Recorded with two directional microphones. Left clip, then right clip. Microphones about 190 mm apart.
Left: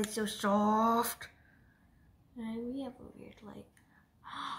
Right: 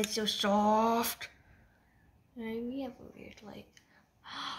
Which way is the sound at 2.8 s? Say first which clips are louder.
Right 2 dB; 25° right (ahead or behind).